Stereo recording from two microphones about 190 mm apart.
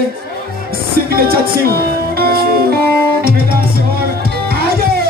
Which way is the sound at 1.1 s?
50° right (ahead or behind).